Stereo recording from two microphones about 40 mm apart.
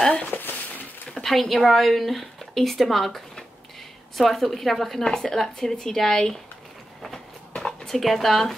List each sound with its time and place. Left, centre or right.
0.1 s a sound: left
1.0 s speech: centre
4.2 s a woman's voice: centre
5.0 s a woman's voice: centre
7.8 s speech: centre